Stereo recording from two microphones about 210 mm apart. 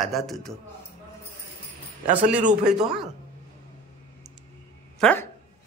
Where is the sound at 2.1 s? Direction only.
5° right (ahead or behind).